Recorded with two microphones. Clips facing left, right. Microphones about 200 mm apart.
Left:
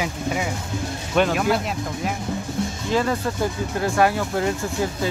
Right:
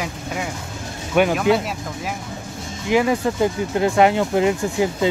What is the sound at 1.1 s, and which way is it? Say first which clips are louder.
Speech: right 3 dB; 10° right (ahead or behind).